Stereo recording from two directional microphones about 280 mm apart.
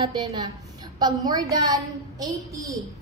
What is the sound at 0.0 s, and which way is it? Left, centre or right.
A woman's voice, centre.